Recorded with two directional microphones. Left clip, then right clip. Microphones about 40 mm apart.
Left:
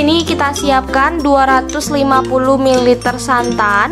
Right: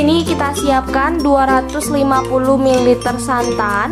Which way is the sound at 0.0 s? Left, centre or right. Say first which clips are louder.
Left 2 dB; centre.